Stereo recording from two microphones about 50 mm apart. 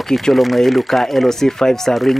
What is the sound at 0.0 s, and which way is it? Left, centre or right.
Speech, centre.